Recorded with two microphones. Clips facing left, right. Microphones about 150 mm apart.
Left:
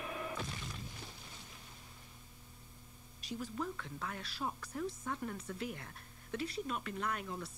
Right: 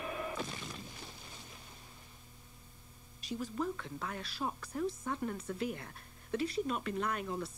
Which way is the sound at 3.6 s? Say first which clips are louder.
Right 4 dB; 20° right (ahead or behind).